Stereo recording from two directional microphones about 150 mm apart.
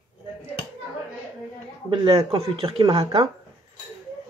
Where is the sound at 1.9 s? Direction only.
40° right (ahead or behind).